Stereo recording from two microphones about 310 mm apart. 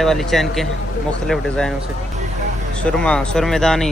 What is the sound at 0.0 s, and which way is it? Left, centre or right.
Speech, centre.